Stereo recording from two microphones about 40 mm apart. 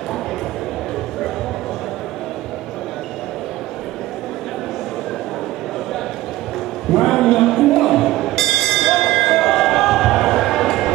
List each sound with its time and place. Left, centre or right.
6.9 s music: centre